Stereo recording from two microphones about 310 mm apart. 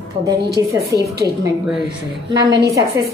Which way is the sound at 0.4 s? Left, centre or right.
Right.